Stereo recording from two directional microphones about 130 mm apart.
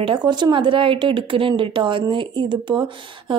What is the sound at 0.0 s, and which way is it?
Speech, 35° right (ahead or behind).